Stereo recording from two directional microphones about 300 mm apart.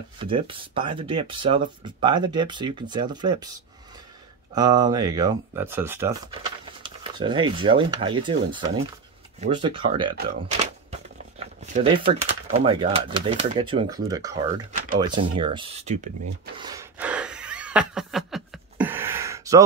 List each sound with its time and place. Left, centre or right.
0.2 s speech: centre
4.6 s speech: centre
16.5 s a sound: centre